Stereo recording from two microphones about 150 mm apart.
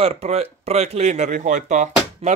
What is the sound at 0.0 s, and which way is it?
Speech, 45° right (ahead or behind).